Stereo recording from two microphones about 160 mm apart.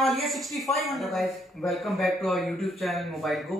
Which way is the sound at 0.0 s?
Centre (ahead or behind).